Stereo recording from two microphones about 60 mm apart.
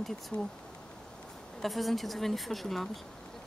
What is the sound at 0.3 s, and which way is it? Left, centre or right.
Speech, left.